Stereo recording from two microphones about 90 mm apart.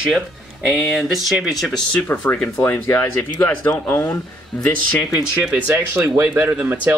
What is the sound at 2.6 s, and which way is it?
Speech, 30° left (ahead or behind).